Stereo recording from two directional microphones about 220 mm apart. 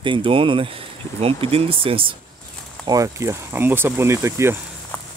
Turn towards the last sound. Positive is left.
turn(degrees=10)  # may be behind; listen again after turning